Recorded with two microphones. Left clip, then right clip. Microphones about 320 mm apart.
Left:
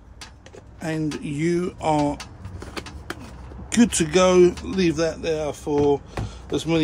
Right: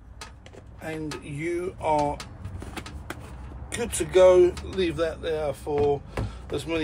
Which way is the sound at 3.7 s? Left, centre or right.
Left.